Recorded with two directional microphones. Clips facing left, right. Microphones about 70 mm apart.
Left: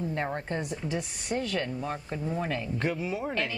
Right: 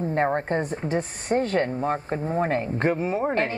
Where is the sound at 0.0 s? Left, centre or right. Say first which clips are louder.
Right 8 dB; right.